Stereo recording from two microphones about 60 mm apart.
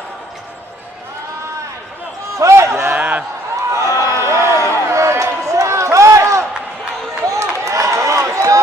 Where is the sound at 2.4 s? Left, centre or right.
Right.